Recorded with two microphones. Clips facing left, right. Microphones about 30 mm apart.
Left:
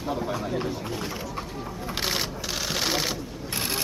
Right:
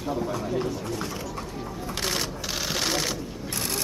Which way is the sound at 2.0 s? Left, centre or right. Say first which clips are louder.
Left 1 dB; centre.